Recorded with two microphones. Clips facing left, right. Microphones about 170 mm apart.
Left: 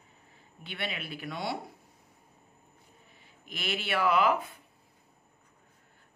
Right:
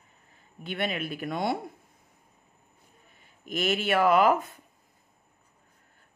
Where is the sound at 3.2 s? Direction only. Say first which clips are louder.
Right 11 dB; 45° right (ahead or behind).